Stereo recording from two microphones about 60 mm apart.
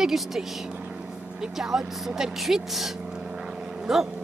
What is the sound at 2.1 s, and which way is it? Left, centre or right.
Vehicle, centre.